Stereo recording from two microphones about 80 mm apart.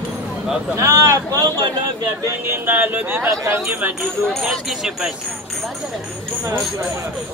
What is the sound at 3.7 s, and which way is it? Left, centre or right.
Speech, right.